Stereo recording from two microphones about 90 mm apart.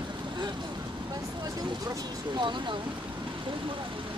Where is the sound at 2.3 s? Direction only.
60° right (ahead or behind).